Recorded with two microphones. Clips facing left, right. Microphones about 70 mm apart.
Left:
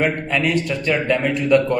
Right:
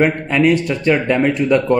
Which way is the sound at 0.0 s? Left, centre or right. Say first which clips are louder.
Right 5 dB; right.